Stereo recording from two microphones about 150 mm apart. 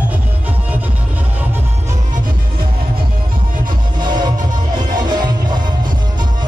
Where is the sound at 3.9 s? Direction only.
30° right (ahead or behind).